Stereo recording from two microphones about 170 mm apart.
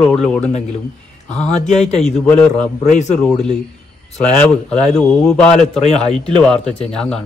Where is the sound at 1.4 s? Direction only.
40° left (ahead or behind).